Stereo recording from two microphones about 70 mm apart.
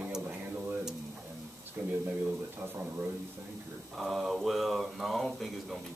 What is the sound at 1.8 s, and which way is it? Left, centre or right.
Speech, right.